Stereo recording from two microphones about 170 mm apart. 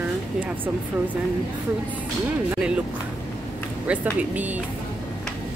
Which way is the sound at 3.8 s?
10° right (ahead or behind).